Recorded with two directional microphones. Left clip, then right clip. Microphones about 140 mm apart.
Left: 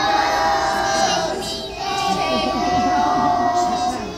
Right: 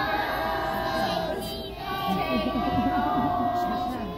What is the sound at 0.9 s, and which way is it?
Music, 15° left (ahead or behind).